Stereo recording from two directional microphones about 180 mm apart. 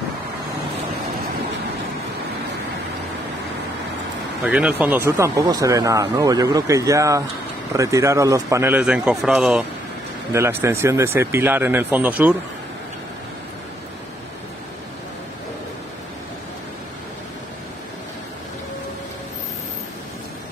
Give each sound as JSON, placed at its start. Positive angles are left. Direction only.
{"t": 4.5, "sound": "speech", "side_deg": -5}
{"t": 10.3, "sound": "speech", "side_deg": -15}